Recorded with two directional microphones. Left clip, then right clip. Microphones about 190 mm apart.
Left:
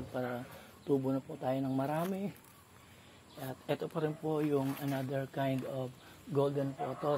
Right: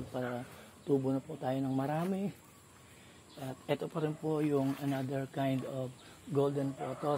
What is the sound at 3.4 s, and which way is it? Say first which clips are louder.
Speech: right 1 dB; 20° right (ahead or behind).